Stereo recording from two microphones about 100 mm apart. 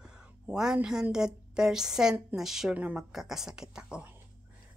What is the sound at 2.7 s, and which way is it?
Speech, 15° right (ahead or behind).